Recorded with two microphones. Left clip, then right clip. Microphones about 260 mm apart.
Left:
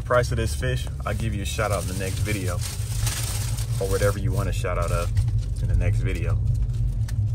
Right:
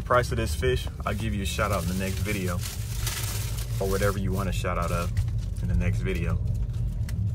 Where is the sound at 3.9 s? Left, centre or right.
Centre.